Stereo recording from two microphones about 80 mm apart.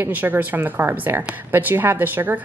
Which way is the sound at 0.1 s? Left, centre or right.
Right.